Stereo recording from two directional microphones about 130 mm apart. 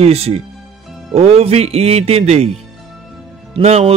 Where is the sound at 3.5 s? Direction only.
50° right (ahead or behind).